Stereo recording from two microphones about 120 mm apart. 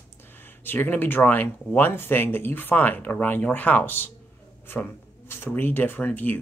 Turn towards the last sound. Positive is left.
turn(degrees=15)  # may be behind; listen again after turning